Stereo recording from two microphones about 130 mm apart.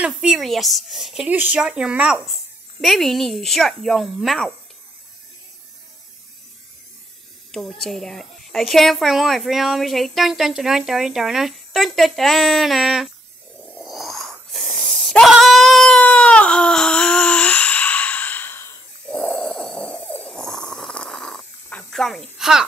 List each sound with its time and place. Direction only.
0.0 s a woman's voice: 5° right (ahead or behind)
7.5 s a woman's voice: centre (ahead or behind)
13.7 s a sound: centre (ahead or behind); by 18.8 s 20° left (ahead or behind)
19.0 s snoring: 10° left (ahead or behind)